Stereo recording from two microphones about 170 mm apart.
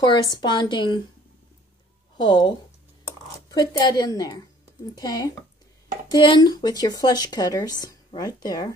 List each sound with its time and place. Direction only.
0.0 s speech: 25° left (ahead or behind)
2.1 s speech: 25° left (ahead or behind)